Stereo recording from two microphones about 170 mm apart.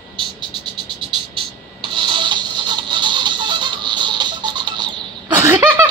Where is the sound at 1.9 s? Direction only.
30° right (ahead or behind).